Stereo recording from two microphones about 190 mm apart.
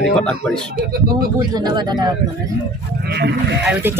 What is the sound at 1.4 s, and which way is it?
Speech, 20° right (ahead or behind).